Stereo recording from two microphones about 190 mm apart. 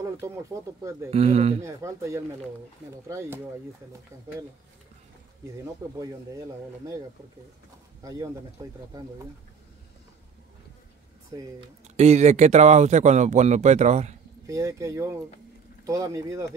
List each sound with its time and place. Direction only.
0.0 s speech: 15° right (ahead or behind)
1.1 s speech: 30° right (ahead or behind)
1.6 s speech: 15° right (ahead or behind)
8.0 s speech: 20° right (ahead or behind)
12.0 s speech: 35° right (ahead or behind)
14.4 s speech: 15° right (ahead or behind)